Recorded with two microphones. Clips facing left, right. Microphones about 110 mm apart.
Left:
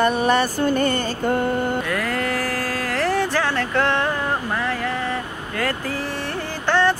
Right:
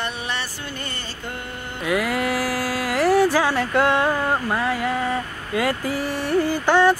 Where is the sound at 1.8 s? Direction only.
10° right (ahead or behind).